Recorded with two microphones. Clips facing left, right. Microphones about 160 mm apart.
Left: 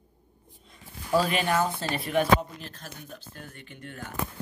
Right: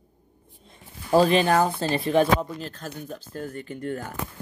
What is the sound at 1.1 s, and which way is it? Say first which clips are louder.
Speech: right 6 dB; 30° right (ahead or behind).